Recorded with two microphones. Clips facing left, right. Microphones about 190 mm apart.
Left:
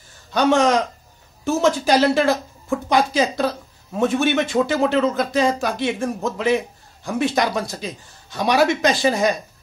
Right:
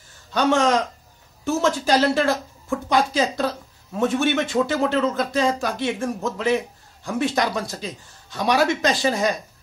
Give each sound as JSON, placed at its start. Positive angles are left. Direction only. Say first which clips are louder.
{"t": 0.3, "sound": "speech", "louder": "left 2 dB", "side_deg": 15}